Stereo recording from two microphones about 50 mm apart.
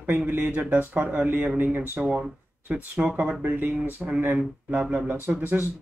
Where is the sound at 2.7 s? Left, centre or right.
Right.